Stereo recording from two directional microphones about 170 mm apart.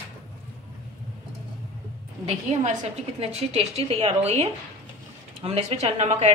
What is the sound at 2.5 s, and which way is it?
A woman's voice, 40° right (ahead or behind).